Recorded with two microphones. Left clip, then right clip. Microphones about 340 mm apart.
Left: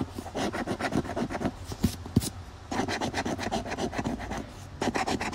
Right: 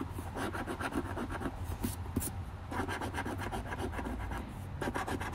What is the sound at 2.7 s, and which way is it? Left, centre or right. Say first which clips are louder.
Rub: left 7 dB; left.